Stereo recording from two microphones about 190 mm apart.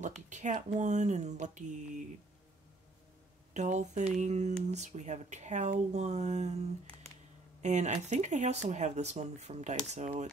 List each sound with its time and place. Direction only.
0.0 s speech: 40° right (ahead or behind)
3.5 s speech: 40° right (ahead or behind)
7.6 s speech: 40° right (ahead or behind)